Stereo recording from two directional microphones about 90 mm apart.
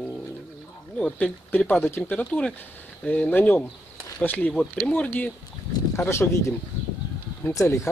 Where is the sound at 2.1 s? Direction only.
15° left (ahead or behind).